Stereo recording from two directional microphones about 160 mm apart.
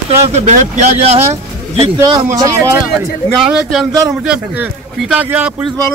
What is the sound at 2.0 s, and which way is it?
Speech, 20° right (ahead or behind).